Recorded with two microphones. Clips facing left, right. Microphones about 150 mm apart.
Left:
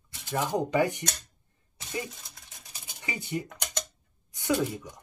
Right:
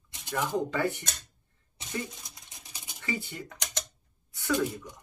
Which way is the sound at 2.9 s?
20° left (ahead or behind).